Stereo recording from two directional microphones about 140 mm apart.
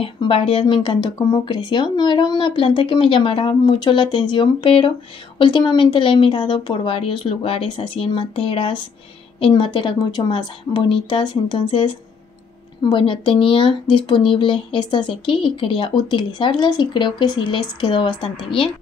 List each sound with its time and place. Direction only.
0.0 s speech: 40° left (ahead or behind)